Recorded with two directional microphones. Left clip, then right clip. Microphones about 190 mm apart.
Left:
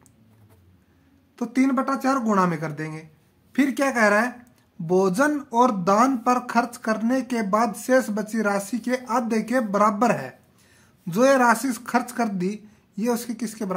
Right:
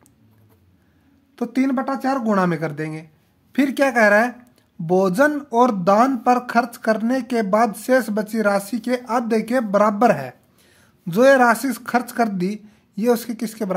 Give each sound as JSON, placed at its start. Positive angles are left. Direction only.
{"t": 1.3, "sound": "speech", "side_deg": -30}